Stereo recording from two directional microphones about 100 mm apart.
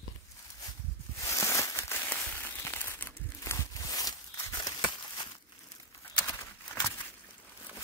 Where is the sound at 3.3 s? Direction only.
30° left (ahead or behind); by 5.4 s 45° left (ahead or behind).